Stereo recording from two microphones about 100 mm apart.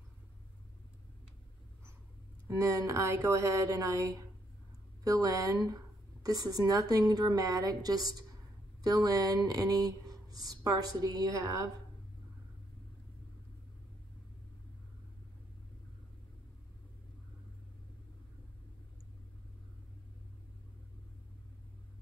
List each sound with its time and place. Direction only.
2.4 s speech: 35° right (ahead or behind)